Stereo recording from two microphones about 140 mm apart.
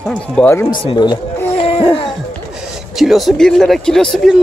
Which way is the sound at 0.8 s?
30° left (ahead or behind).